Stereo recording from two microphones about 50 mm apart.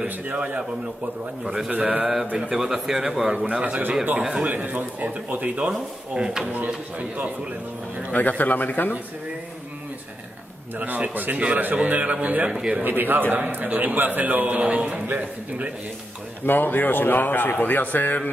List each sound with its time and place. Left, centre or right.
0.0 s a man's voice: right
1.4 s speech: centre
1.8 s a man's voice: right
2.5 s speech: centre
3.3 s a man's voice: right
4.2 s speech: centre
4.5 s a man's voice: right
5.7 s speech: centre
6.5 s a man's voice: right
8.1 s a man's voice: left
10.8 s a man's voice: right
12.8 s a man's voice: right
16.4 s a man's voice: left